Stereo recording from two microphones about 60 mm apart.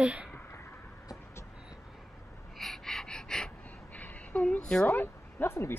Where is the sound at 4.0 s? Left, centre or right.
Left.